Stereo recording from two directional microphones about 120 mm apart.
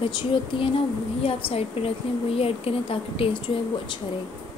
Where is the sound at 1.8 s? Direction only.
55° left (ahead or behind).